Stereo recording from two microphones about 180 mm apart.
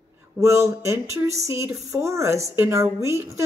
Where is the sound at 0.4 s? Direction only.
15° right (ahead or behind).